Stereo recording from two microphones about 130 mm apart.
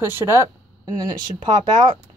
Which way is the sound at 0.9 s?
35° right (ahead or behind).